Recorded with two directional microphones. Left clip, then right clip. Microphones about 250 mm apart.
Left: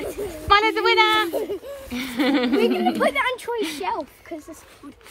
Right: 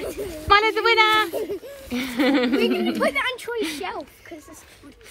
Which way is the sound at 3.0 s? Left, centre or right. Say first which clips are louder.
Left 2 dB; left.